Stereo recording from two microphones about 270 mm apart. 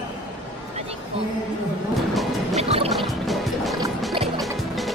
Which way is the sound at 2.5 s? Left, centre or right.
Right.